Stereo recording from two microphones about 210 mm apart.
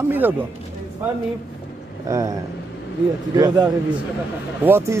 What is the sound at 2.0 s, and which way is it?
A man's voice, 15° right (ahead or behind).